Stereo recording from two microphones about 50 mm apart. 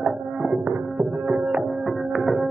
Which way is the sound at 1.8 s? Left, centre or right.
Centre.